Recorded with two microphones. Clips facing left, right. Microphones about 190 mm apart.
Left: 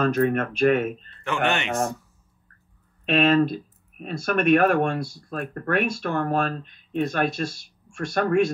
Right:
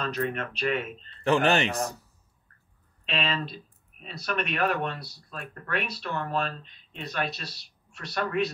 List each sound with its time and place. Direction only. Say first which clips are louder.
0.0 s speech: left 9 dB; 50° left (ahead or behind)
1.2 s speech: right 2 dB; 35° right (ahead or behind)
3.1 s speech: left 12 dB; 50° left (ahead or behind)